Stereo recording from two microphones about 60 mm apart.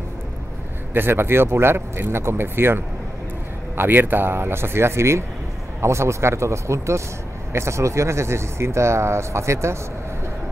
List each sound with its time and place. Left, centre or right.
0.9 s speech: right